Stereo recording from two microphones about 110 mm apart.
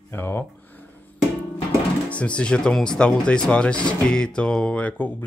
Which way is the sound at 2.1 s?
10° left (ahead or behind).